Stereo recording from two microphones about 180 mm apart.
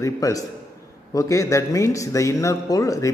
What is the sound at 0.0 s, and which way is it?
A man's voice, 20° left (ahead or behind).